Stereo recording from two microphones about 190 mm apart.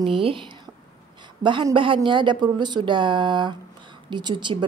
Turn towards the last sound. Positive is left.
turn(degrees=-25)  # may be behind; listen again after turning